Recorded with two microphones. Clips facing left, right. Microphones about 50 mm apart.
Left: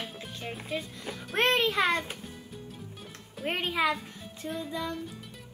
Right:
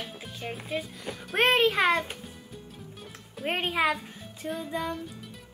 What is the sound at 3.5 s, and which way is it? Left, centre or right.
Speech, centre.